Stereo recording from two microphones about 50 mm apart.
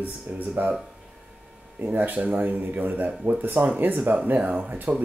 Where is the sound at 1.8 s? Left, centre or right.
Right.